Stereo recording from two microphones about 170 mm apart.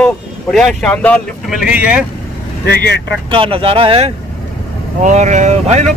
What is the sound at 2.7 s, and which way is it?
Speech, 70° left (ahead or behind).